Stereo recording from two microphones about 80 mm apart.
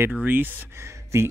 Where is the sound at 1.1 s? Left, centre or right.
Right.